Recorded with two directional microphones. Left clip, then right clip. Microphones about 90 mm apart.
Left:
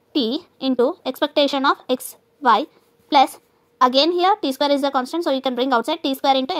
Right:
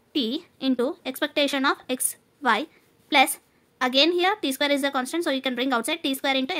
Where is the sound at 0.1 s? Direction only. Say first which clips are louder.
Left 5 dB; 30° left (ahead or behind).